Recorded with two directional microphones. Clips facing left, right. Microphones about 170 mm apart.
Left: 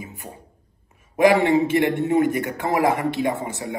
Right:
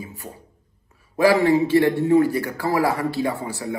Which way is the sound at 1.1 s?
20° left (ahead or behind).